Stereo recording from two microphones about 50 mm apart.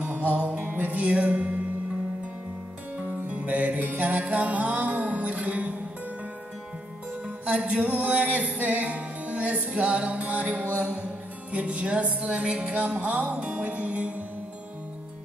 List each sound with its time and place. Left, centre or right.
0.0 s music: right
3.0 s music: right
7.4 s music: right
11.5 s music: right